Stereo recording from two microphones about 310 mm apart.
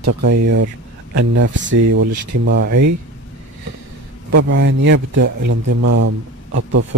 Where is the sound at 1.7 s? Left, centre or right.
Right.